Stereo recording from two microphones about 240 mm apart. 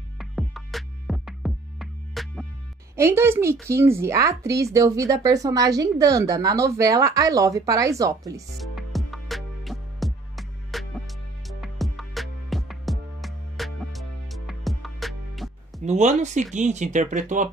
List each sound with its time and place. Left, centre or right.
0.2 s music: centre
3.0 s speech: centre
8.5 s music: centre
15.8 s speech: right